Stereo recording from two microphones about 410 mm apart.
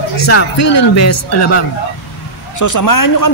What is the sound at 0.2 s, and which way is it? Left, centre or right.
Speech, left.